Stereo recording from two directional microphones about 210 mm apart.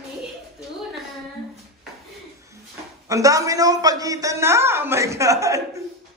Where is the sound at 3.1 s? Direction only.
15° right (ahead or behind).